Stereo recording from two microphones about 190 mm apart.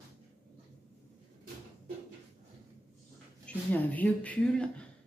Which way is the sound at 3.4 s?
10° left (ahead or behind).